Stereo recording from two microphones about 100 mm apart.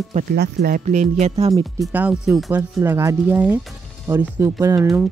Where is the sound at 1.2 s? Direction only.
90° right.